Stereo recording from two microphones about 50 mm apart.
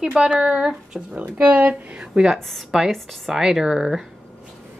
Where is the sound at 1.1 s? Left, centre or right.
Right.